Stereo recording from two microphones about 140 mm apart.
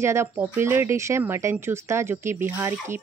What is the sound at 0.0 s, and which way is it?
Speech, 20° right (ahead or behind).